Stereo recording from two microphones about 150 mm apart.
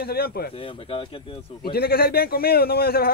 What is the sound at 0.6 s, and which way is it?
Speech, 35° left (ahead or behind).